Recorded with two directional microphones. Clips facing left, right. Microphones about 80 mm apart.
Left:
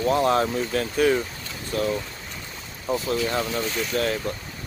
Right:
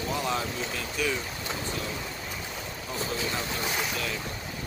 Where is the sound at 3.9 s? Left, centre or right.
Left.